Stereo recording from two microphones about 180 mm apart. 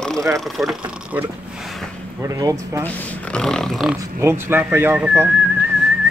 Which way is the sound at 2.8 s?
10° left (ahead or behind).